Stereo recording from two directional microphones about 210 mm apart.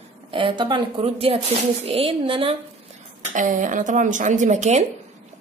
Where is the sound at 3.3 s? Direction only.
40° right (ahead or behind).